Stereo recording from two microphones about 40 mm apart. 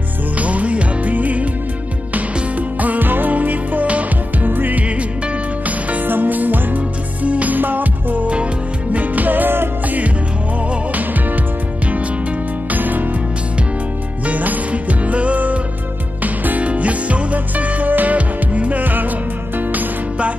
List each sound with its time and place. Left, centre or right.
0.4 s music: right
2.8 s music: right
4.5 s music: right
6.0 s music: right
7.2 s music: right
7.5 s music: right
12.7 s music: right
14.2 s music: right